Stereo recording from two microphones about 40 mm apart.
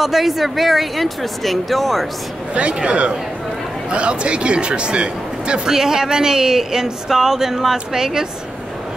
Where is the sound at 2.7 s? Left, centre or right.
Right.